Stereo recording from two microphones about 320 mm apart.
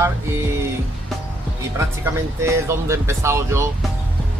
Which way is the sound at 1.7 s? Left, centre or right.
Centre.